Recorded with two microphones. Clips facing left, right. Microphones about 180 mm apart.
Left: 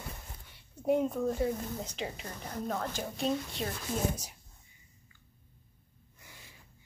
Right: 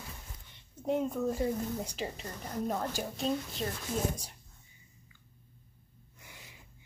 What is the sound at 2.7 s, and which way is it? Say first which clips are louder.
Speech: even; 10° right (ahead or behind).